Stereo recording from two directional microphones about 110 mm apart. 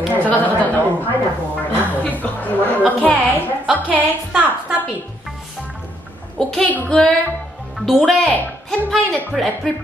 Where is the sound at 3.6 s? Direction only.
15° right (ahead or behind).